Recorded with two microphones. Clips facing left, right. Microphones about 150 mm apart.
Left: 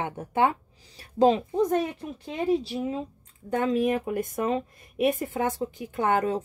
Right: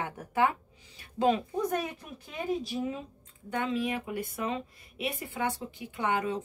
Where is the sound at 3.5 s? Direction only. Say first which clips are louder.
Left 7 dB; 40° left (ahead or behind).